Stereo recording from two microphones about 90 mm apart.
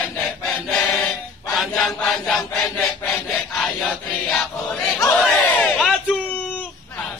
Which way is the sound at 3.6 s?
Centre (ahead or behind).